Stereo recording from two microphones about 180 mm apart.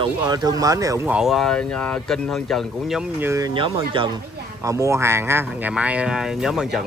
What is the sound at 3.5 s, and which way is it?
Speech, 30° right (ahead or behind).